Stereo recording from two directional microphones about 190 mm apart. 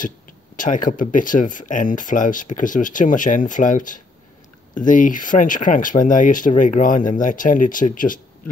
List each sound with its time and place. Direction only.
0.6 s speech: 45° left (ahead or behind)